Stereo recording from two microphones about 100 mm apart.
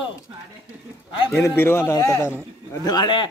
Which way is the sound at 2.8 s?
50° left (ahead or behind).